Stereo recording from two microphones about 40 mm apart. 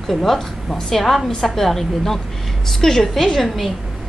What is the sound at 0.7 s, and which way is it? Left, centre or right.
Speech, centre.